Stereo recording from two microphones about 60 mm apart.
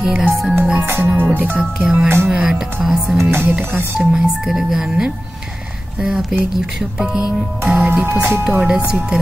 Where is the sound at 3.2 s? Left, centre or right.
Right.